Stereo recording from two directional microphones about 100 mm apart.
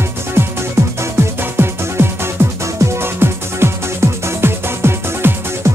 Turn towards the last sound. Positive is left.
turn(degrees=-25)  # may be behind; listen again after turning